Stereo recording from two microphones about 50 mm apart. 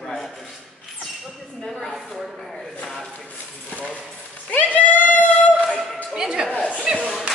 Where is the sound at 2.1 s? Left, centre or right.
Centre.